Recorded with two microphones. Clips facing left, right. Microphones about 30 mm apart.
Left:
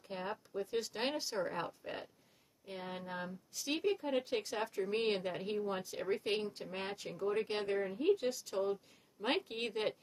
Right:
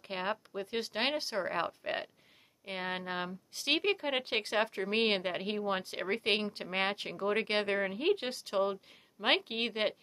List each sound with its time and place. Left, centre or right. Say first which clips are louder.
0.1 s speech: right 6 dB; right
0.5 s speech: right 1 dB; right
1.5 s speech: right 7 dB; right
2.6 s speech: right 7 dB; right
3.3 s speech: right 7 dB; right
4.6 s speech: right 4 dB; right